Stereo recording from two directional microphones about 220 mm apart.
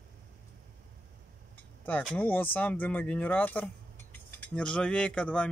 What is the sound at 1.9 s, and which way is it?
Speech, 5° left (ahead or behind).